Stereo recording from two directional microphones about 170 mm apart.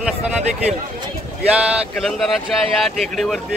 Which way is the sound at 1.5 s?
5° right (ahead or behind).